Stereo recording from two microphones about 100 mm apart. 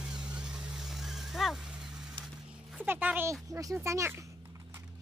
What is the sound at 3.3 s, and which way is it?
Speech, 30° right (ahead or behind).